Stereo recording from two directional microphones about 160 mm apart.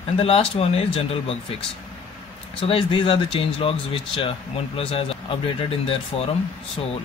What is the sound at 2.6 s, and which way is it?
Speech, 35° left (ahead or behind).